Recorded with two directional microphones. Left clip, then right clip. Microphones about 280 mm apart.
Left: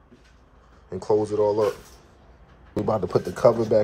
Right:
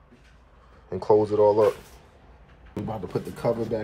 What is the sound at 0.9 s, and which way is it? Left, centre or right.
Speech, centre.